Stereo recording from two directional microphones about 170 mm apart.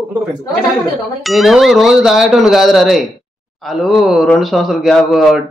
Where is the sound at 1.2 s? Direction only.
Centre (ahead or behind).